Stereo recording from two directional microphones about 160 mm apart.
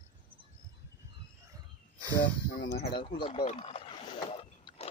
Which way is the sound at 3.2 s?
35° left (ahead or behind).